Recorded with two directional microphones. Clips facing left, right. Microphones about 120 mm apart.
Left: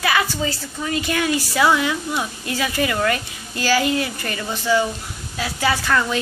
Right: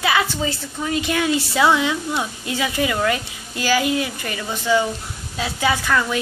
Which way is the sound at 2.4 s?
15° right (ahead or behind).